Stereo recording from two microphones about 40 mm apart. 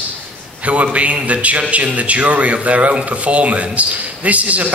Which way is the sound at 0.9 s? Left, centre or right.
Right.